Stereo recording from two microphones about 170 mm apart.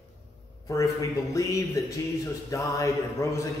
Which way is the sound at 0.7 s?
20° left (ahead or behind).